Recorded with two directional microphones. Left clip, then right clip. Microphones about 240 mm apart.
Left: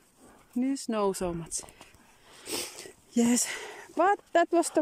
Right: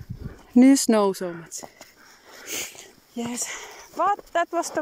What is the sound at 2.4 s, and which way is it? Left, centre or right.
Sniff, left.